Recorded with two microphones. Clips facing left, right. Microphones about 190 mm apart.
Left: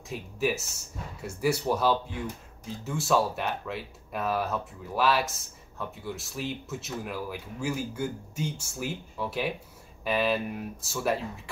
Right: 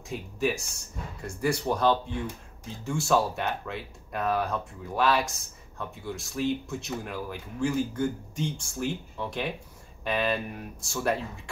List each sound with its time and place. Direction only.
0.1 s speech: centre (ahead or behind)